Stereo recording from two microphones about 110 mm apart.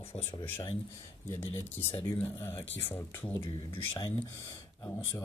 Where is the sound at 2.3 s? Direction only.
20° left (ahead or behind).